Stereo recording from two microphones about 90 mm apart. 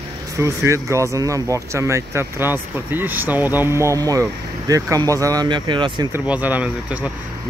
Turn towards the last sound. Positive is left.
turn(degrees=-15)  # may be behind; listen again after turning